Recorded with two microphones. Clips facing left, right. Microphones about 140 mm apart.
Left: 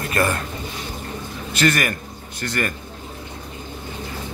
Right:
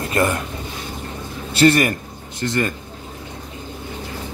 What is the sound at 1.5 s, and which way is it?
A man's voice, 30° right (ahead or behind).